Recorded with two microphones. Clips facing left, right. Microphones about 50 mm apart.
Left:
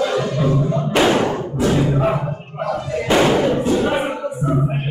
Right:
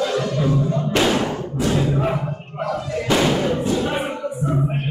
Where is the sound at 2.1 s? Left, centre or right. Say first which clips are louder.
Left 3 dB; centre.